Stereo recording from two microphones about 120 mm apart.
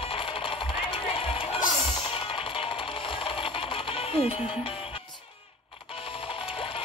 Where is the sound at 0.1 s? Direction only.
50° left (ahead or behind).